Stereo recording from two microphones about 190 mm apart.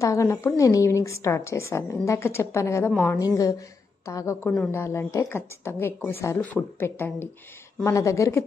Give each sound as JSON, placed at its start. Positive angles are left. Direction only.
{"t": 0.0, "sound": "a woman's voice", "side_deg": 15}